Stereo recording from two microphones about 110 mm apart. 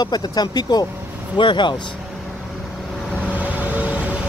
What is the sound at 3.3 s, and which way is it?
Vehicle, 15° right (ahead or behind).